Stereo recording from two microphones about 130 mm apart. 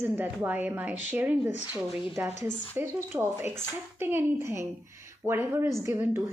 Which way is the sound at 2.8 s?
20° right (ahead or behind).